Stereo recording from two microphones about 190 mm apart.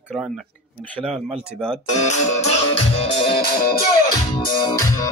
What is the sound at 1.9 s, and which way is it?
Music, 40° left (ahead or behind).